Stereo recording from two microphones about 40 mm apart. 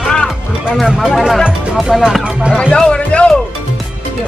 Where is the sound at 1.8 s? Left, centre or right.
Centre.